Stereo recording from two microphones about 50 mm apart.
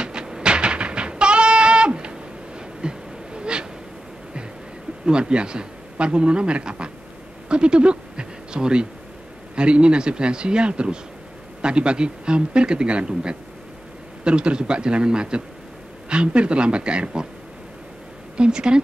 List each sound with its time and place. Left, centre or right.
0.0 s music: centre
2.8 s a sound: centre
5.0 s a man's voice: centre
18.4 s a man's voice: centre